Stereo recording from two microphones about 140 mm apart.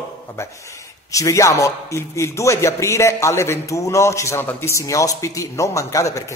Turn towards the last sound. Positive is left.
turn(degrees=20)  # may be behind; listen again after turning